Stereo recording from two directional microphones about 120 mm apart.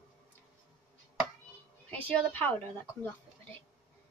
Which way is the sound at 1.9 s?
15° left (ahead or behind).